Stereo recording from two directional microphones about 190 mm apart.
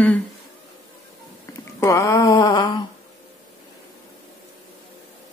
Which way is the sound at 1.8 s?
15° left (ahead or behind).